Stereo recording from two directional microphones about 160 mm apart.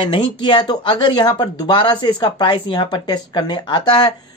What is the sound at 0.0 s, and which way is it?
Speech, 30° left (ahead or behind).